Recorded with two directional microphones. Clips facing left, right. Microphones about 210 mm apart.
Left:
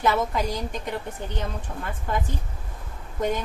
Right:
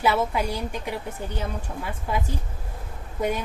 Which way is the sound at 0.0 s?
10° right (ahead or behind).